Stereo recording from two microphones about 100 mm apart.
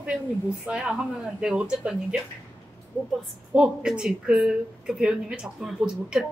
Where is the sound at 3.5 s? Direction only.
5° right (ahead or behind).